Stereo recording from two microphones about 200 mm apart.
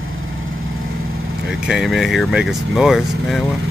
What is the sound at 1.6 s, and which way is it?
Speech, centre (ahead or behind).